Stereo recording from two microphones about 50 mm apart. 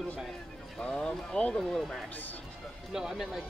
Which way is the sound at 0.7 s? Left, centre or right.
Centre.